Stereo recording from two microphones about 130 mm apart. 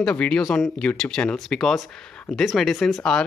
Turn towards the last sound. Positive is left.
turn(degrees=5)  # may be behind; listen again after turning